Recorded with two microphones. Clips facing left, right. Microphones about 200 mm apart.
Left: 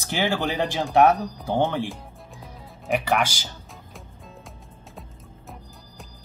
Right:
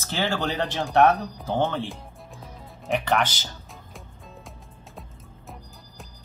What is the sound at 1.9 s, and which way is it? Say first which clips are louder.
Music: left 1 dB; centre (ahead or behind).